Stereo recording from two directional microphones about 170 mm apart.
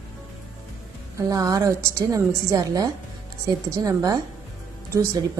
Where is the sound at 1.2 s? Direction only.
20° right (ahead or behind).